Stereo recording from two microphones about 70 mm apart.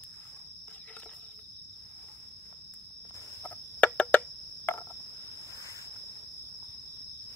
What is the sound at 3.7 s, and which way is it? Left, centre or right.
Cricket, centre.